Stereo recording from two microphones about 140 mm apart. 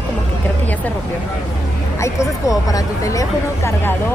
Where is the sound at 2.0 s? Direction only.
25° left (ahead or behind).